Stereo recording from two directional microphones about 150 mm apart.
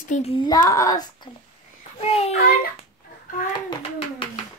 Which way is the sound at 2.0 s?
40° left (ahead or behind).